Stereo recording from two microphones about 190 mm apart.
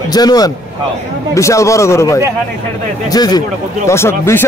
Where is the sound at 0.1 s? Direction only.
20° left (ahead or behind).